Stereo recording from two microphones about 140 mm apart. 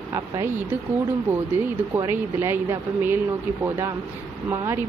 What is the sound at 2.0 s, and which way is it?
Speech, 15° right (ahead or behind).